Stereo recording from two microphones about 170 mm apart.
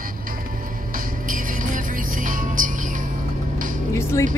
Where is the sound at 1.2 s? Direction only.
50° right (ahead or behind).